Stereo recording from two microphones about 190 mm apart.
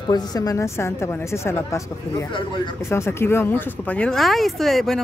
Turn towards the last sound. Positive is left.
turn(degrees=0)  # may be behind; listen again after turning